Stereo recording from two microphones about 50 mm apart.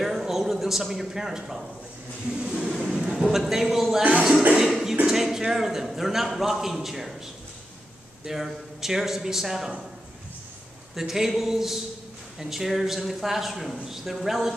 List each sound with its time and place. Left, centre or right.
0.0 s a sound: centre
2.3 s a man's voice: centre
4.6 s music: centre
5.0 s a man's voice: centre
8.3 s a man's voice: centre
11.0 s a man's voice: centre